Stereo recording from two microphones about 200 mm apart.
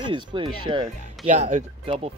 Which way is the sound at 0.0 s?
25° right (ahead or behind).